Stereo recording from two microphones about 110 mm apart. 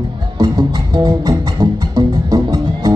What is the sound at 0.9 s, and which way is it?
Music, 45° right (ahead or behind).